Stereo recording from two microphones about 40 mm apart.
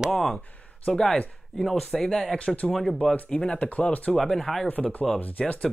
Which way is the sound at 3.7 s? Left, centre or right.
Left.